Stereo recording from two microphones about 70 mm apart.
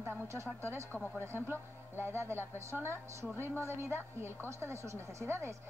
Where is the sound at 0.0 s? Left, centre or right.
Right.